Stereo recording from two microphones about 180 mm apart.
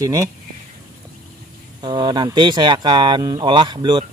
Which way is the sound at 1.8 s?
25° right (ahead or behind).